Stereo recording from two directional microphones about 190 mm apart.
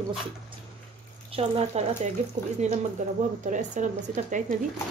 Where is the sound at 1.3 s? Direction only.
30° right (ahead or behind).